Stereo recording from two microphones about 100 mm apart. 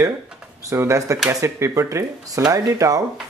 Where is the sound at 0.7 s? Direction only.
30° right (ahead or behind).